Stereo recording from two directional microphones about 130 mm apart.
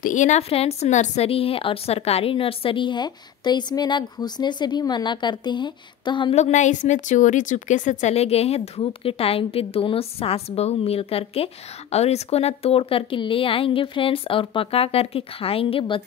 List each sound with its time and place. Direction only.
0.0 s a woman's voice: 75° left (ahead or behind)
0.4 s a woman's voice: 50° left (ahead or behind)
6.3 s a woman's voice: 65° left (ahead or behind); by 16.0 s 45° left (ahead or behind)